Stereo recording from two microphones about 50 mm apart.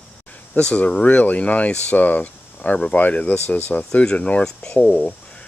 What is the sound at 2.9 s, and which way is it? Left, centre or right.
Speech, left.